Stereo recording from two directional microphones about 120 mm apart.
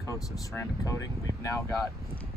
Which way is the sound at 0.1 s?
25° left (ahead or behind).